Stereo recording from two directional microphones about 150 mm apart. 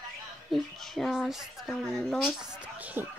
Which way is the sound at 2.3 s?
10° right (ahead or behind).